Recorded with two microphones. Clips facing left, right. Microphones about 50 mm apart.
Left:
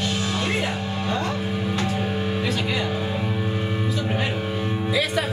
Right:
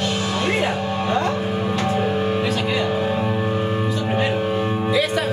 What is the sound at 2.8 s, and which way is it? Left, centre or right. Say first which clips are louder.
Music: right 5 dB; right.